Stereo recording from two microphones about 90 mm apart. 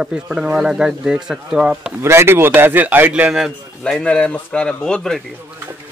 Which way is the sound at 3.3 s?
5° right (ahead or behind).